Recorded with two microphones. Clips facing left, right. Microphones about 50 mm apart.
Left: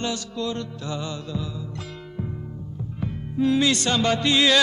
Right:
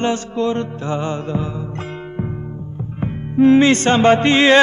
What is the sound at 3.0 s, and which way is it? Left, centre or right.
Music, right.